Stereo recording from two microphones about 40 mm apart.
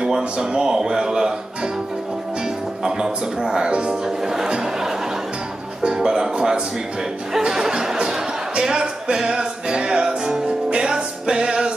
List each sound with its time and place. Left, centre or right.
0.0 s speech: centre
2.8 s speech: centre
5.9 s speech: centre
10.7 s music: centre